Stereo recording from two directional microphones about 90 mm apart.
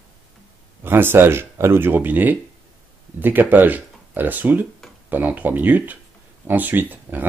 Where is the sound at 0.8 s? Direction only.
25° right (ahead or behind).